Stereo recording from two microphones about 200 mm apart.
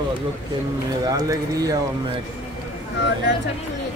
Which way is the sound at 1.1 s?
15° right (ahead or behind).